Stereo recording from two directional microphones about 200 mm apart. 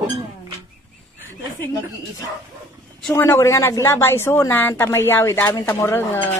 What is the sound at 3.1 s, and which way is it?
Speech, 15° left (ahead or behind).